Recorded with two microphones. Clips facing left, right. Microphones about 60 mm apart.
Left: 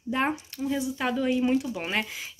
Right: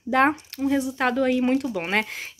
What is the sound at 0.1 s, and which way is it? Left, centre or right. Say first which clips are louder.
Speech: right 8 dB; right.